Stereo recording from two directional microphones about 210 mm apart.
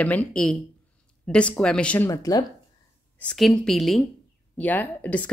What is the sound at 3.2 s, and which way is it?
Speech, 5° left (ahead or behind).